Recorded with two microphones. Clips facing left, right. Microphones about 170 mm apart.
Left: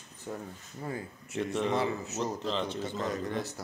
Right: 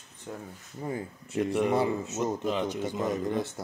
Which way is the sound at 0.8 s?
20° right (ahead or behind).